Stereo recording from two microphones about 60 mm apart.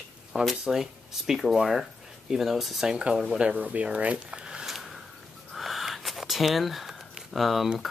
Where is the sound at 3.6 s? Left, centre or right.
Right; by 7.7 s centre.